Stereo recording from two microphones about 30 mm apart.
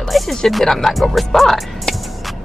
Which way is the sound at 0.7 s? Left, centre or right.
Centre.